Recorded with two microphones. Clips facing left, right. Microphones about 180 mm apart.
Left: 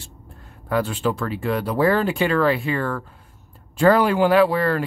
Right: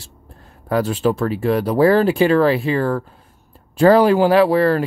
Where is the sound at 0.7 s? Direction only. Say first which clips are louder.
Right 4 dB; 35° right (ahead or behind).